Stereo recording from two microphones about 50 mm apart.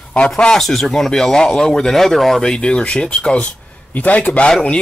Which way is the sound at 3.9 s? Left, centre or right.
Left.